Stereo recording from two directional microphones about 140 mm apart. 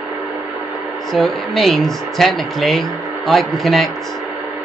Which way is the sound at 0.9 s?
Centre (ahead or behind).